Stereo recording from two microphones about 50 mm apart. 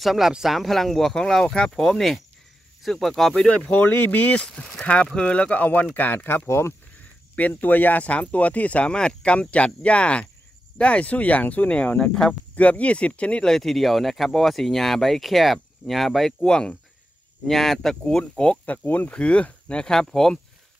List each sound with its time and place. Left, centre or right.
0.0 s speech: centre
0.6 s speech: centre
3.4 s speech: left
5.9 s speech: left
7.0 s speech: left
12.1 s speech: centre
12.5 s speech: left
13.5 s speech: centre
16.4 s speech: centre
17.5 s speech: centre
18.3 s speech: centre
18.7 s speech: left; by 20.3 s centre